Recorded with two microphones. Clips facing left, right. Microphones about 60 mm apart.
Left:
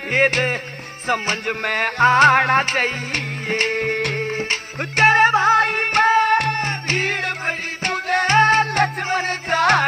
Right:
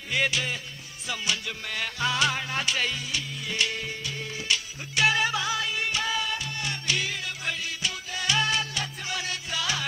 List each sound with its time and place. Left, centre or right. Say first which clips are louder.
0.1 s music: left 9 dB; left